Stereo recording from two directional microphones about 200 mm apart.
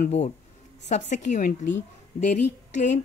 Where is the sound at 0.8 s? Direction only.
35° left (ahead or behind).